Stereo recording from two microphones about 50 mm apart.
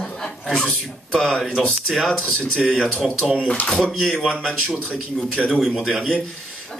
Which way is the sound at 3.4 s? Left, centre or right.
Left.